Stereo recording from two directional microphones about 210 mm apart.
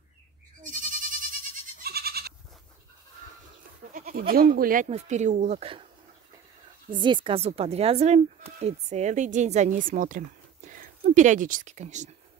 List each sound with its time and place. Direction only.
0.6 s goat: 40° right (ahead or behind)
1.8 s goat: 50° right (ahead or behind)
3.9 s goat: 40° right (ahead or behind)
4.3 s speech: 45° right (ahead or behind)
4.8 s a woman's voice: 30° right (ahead or behind)
6.9 s a woman's voice: 20° right (ahead or behind)